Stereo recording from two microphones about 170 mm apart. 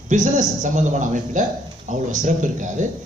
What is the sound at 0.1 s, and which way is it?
A man's voice, 45° right (ahead or behind).